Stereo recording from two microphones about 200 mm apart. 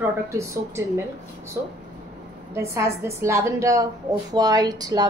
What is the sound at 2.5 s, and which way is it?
A woman's voice, 15° right (ahead or behind).